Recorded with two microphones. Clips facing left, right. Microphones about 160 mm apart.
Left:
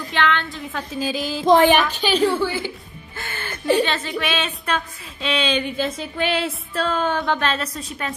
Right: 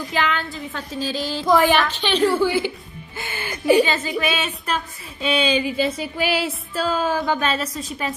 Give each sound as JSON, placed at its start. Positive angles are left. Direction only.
{"t": 0.1, "sound": "a woman's voice", "side_deg": -5}
{"t": 0.9, "sound": "a woman's voice", "side_deg": 10}
{"t": 1.4, "sound": "a sound", "side_deg": 25}
{"t": 1.8, "sound": "a woman's voice", "side_deg": 10}
{"t": 2.3, "sound": "a woman's voice", "side_deg": -15}